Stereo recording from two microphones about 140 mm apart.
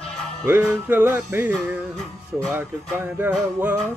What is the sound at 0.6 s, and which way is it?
Music, 10° right (ahead or behind).